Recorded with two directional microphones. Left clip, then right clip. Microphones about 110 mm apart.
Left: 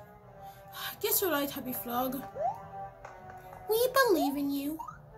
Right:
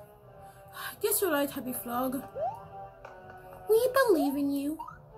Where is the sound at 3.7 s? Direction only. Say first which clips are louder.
Right 2 dB; 25° left (ahead or behind).